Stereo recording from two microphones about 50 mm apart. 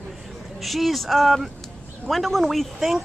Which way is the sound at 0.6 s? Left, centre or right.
Centre.